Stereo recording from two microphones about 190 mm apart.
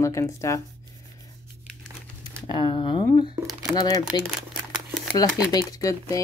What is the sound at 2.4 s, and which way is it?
Speech, 25° left (ahead or behind).